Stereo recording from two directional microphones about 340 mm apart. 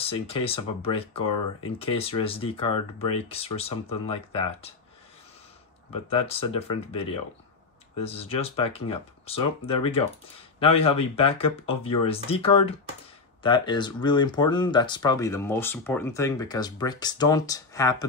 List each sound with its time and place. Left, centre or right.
0.0 s speech: centre
5.9 s speech: centre